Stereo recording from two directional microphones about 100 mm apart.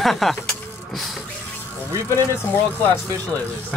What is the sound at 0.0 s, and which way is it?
Vehicle, centre (ahead or behind).